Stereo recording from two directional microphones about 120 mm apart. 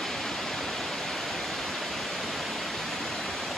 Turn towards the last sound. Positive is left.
turn(degrees=0)  # may be behind; listen again after turning